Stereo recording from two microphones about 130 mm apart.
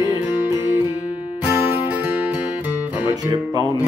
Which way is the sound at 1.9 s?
10° right (ahead or behind).